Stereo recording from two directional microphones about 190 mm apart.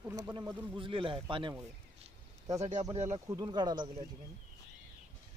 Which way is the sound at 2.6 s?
35° right (ahead or behind).